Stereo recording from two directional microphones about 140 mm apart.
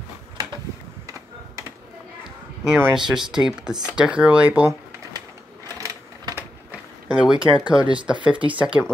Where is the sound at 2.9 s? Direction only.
5° right (ahead or behind).